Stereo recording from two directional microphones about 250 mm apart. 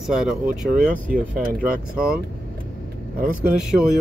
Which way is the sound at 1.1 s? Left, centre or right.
Right.